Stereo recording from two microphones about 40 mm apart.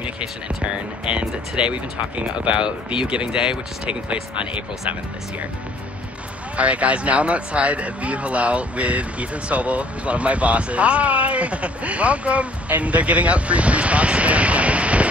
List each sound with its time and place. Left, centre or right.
0.2 s speech: right
6.5 s speech: right